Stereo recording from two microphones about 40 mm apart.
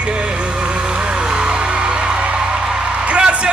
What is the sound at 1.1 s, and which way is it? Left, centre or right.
Music, right.